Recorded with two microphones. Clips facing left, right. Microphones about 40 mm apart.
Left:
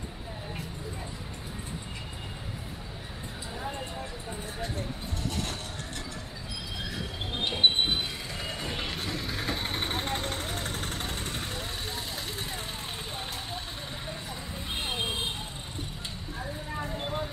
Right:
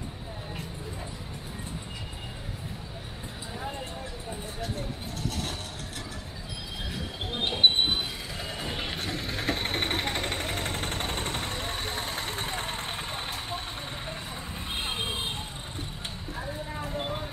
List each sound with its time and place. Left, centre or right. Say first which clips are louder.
7.3 s train: right 1 dB; centre
8.5 s a sound: even; centre
8.9 s vehicle: right 1 dB; right
15.0 s vehicle: even; centre
16.9 s vehicle: right 1 dB; centre